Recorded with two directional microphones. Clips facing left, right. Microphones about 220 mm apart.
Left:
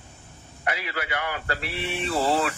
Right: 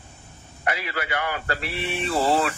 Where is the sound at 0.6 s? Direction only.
50° right (ahead or behind).